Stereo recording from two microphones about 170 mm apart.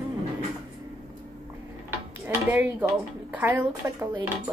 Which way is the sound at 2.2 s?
10° right (ahead or behind).